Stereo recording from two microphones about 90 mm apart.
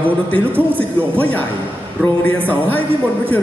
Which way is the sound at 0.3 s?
15° left (ahead or behind).